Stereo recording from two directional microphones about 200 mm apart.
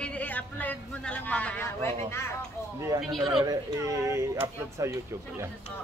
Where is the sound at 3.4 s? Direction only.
15° right (ahead or behind).